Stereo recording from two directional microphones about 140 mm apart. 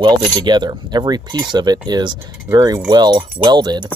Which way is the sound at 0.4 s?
30° right (ahead or behind).